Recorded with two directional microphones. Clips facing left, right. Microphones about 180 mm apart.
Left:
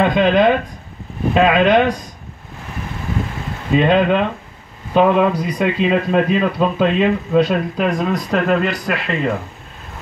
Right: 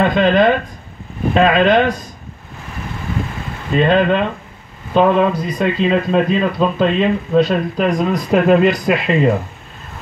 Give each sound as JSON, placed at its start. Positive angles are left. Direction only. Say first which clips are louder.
{"t": 0.0, "sound": "speech", "louder": "right 1 dB", "side_deg": 10}
{"t": 3.7, "sound": "speech", "louder": "even", "side_deg": 10}
{"t": 8.3, "sound": "speech", "louder": "right 7 dB", "side_deg": -15}